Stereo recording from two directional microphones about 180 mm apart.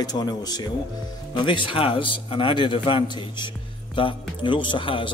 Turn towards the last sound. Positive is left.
turn(degrees=30)  # may be behind; listen again after turning